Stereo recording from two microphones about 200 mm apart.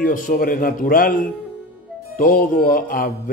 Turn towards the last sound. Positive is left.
turn(degrees=45)  # may be behind; listen again after turning